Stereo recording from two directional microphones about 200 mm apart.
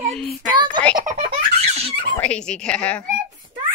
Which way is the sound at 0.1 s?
Centre (ahead or behind).